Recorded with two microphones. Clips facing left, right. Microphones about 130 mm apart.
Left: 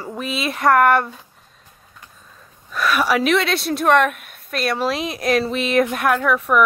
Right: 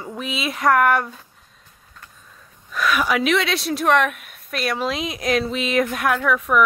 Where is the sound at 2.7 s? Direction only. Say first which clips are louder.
Left 2 dB; 35° left (ahead or behind).